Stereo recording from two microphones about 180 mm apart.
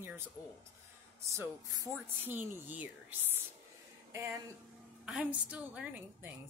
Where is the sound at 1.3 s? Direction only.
15° right (ahead or behind).